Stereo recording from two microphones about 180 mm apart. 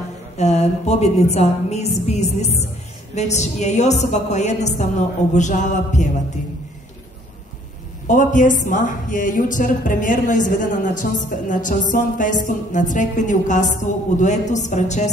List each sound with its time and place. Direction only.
0.4 s a woman's voice: 35° left (ahead or behind)
8.1 s a woman's voice: 45° left (ahead or behind)